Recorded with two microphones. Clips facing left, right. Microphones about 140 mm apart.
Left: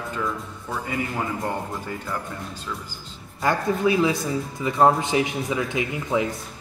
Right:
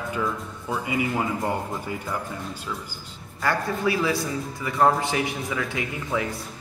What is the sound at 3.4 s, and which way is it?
Speech, 20° left (ahead or behind).